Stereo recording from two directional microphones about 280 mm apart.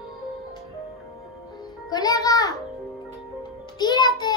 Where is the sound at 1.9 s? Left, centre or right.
Centre.